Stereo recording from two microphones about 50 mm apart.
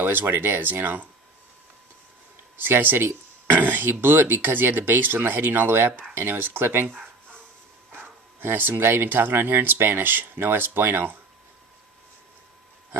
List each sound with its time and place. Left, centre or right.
0.0 s speech: right
2.5 s speech: right